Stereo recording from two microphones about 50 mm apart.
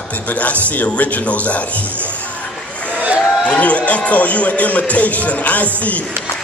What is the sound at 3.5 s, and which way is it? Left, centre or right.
A man's voice, left.